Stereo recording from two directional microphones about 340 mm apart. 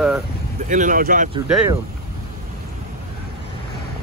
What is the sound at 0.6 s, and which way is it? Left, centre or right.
Speech, right.